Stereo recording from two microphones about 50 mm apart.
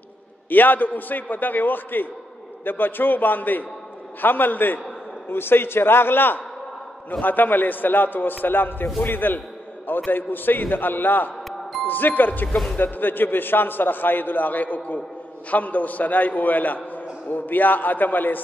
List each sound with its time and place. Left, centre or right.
0.5 s a man's voice: left
5.3 s a man's voice: left